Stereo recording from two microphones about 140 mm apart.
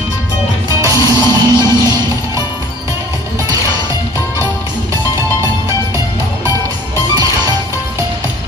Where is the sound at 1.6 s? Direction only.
20° left (ahead or behind).